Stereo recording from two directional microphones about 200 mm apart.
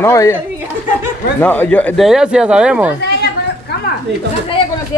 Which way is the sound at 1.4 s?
10° left (ahead or behind).